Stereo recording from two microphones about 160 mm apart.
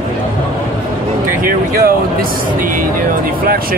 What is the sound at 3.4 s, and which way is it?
Speech, 65° right (ahead or behind).